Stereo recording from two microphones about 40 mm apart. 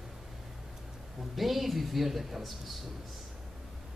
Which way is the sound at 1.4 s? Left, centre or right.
Centre.